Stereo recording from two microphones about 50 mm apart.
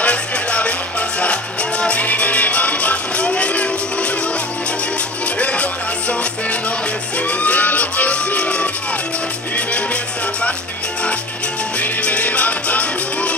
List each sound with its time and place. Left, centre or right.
0.0 s music: left
5.4 s music: left
11.8 s music: left